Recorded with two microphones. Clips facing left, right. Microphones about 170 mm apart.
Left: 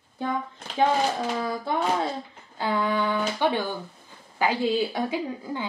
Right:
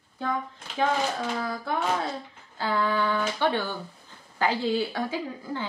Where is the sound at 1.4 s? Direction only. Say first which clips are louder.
Left 2 dB; 20° left (ahead or behind).